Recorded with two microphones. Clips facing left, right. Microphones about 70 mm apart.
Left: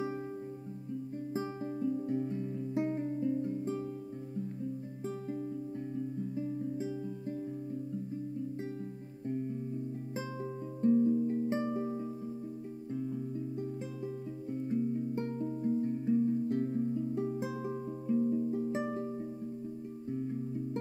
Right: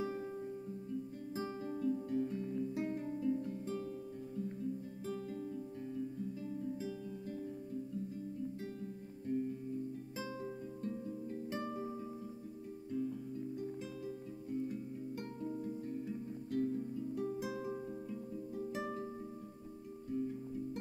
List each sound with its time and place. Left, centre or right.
1.3 s music: left
5.0 s music: left
10.8 s music: left
13.6 s music: left